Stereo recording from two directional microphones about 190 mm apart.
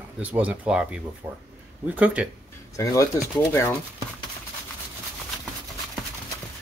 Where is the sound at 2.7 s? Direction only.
15° left (ahead or behind).